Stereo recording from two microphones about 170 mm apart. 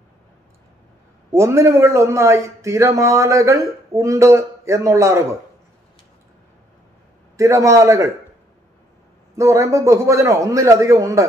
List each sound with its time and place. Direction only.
1.3 s a man's voice: 15° right (ahead or behind)
7.3 s a man's voice: 15° right (ahead or behind)
9.3 s a man's voice: 20° right (ahead or behind)